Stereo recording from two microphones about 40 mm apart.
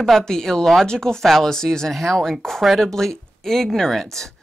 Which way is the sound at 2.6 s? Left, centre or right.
Centre.